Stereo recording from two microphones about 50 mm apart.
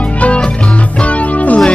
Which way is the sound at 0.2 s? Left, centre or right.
Left.